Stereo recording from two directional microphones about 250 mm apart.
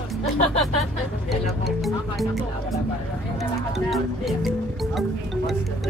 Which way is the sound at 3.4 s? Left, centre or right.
Centre.